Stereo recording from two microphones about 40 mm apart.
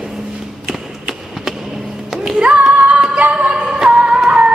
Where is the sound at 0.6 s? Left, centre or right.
Centre.